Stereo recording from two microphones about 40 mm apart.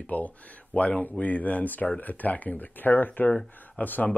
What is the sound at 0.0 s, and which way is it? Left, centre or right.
Speech, left.